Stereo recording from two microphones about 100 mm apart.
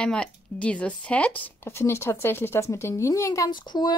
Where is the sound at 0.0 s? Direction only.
10° left (ahead or behind).